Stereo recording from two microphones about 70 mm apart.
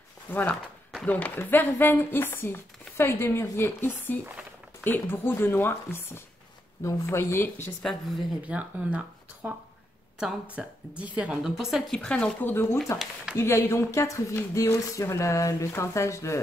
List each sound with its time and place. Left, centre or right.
0.3 s speech: left
6.8 s speech: left
7.4 s speech: left
7.8 s a woman's voice: centre
8.5 s speech: centre
10.6 s a woman's voice: centre
11.9 s speech: centre
12.4 s speech: left
12.9 s speech: left